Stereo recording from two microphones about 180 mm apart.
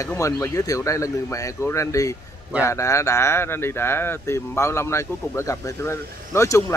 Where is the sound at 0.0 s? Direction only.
15° left (ahead or behind).